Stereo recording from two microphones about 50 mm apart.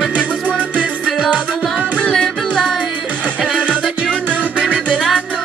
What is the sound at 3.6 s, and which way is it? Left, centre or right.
Music, right.